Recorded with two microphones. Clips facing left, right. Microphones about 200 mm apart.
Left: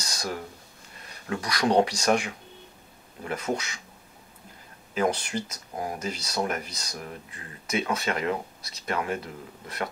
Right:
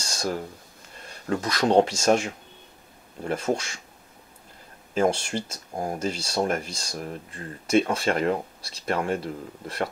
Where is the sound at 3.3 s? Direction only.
30° right (ahead or behind).